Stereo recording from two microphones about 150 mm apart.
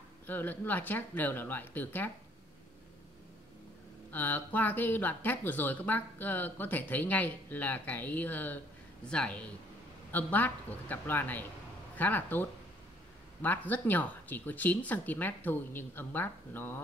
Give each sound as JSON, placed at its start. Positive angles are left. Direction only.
{"t": 0.3, "sound": "speech", "side_deg": 10}
{"t": 4.1, "sound": "speech", "side_deg": 10}